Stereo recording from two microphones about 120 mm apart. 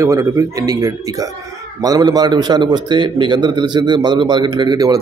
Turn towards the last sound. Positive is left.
turn(degrees=-35)  # may be behind; listen again after turning